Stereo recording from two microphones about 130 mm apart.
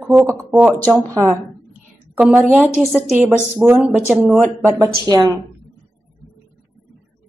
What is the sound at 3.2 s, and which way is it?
A woman's voice, 15° right (ahead or behind).